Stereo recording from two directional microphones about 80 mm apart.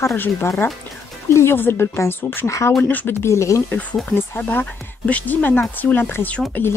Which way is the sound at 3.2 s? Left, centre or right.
Left.